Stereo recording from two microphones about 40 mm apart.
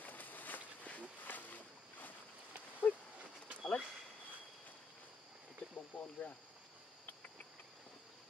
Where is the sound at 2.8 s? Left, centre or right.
Left.